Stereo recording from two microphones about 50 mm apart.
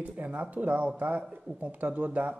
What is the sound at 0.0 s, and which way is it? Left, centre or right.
Speech, right.